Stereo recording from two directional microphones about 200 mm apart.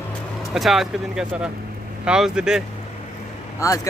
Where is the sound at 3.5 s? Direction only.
15° left (ahead or behind).